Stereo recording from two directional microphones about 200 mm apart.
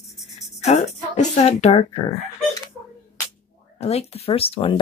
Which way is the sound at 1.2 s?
35° left (ahead or behind).